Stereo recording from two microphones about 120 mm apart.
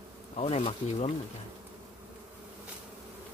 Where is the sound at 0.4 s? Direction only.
60° left (ahead or behind).